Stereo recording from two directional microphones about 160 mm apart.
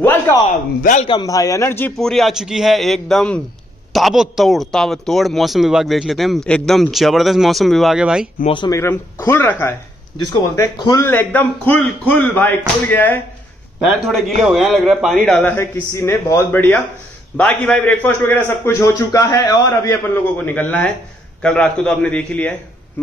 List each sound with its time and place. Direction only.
0.0 s a sound: 15° left (ahead or behind)
1.0 s speech: 25° left (ahead or behind)
2.0 s a man's voice: centre (ahead or behind)
8.6 s a man's voice: 15° left (ahead or behind)
10.1 s speech: 25° left (ahead or behind)
11.1 s a man's voice: 10° left (ahead or behind)
13.7 s a man's voice: centre (ahead or behind)
15.5 s a man's voice: 15° left (ahead or behind)
20.3 s a man's voice: 10° left (ahead or behind)